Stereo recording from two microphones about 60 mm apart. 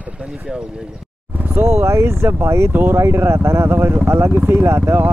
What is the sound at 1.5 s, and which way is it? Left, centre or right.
Speech, right.